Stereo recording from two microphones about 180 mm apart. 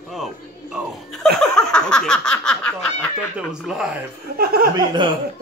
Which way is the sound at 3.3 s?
5° right (ahead or behind).